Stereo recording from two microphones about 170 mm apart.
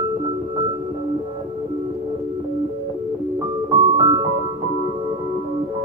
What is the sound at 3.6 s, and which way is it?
Piano, 25° right (ahead or behind).